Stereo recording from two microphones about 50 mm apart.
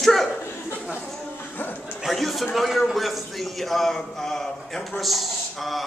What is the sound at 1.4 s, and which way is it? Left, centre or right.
Music, left.